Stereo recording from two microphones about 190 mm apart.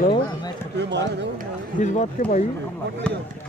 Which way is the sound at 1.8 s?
40° left (ahead or behind).